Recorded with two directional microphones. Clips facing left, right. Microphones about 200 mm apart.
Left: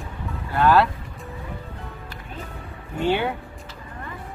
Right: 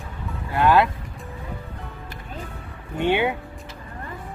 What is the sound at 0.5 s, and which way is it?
Speech, 15° right (ahead or behind).